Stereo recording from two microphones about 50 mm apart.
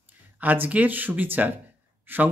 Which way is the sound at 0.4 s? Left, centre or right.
Right.